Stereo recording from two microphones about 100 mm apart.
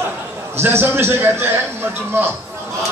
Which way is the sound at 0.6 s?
25° right (ahead or behind).